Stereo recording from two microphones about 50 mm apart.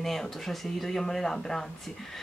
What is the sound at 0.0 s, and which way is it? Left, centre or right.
Speech, centre.